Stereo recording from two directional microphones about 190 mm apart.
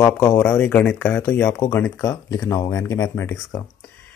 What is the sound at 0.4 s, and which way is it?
Speech, 5° left (ahead or behind).